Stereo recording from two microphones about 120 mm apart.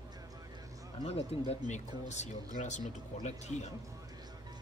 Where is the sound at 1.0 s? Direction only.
50° left (ahead or behind).